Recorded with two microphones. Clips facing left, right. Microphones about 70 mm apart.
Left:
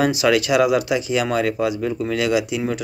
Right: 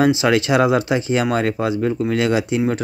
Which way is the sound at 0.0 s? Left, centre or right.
Right.